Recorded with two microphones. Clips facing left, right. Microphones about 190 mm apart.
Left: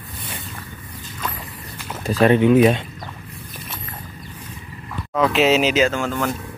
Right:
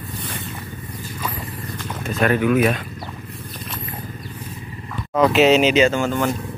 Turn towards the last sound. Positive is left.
turn(degrees=-5)  # may be behind; listen again after turning